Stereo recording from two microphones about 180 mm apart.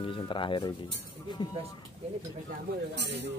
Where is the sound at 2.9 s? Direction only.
75° right (ahead or behind).